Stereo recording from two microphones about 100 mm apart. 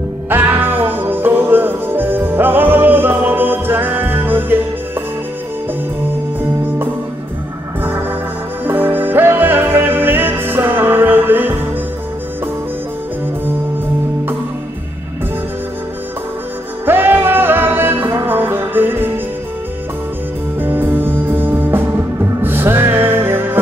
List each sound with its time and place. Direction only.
0.3 s music: 20° right (ahead or behind)
8.6 s music: 20° right (ahead or behind)
16.8 s music: 20° right (ahead or behind)
20.6 s music: 20° right (ahead or behind)